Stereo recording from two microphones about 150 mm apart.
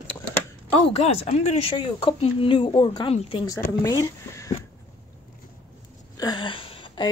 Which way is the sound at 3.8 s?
20° left (ahead or behind).